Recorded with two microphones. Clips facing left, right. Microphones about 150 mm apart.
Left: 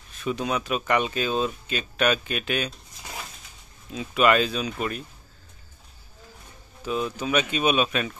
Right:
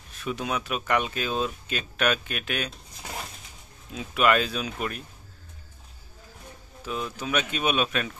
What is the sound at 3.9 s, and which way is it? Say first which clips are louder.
Speech: left 2 dB; centre (ahead or behind).